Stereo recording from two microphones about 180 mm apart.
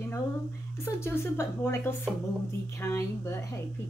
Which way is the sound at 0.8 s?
15° left (ahead or behind).